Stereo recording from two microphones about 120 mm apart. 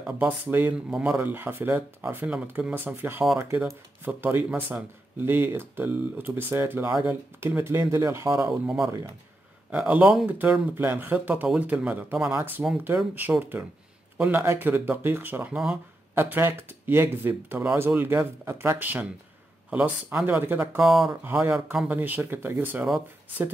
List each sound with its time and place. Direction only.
0.0 s speech: 15° right (ahead or behind)
9.7 s a man's voice: 10° right (ahead or behind)
15.5 s speech: 5° right (ahead or behind)
16.2 s speech: 20° right (ahead or behind)
20.8 s speech: centre (ahead or behind)
21.2 s speech: 20° right (ahead or behind)